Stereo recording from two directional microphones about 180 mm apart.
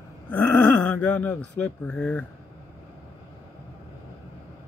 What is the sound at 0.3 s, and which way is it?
Speech, 5° left (ahead or behind).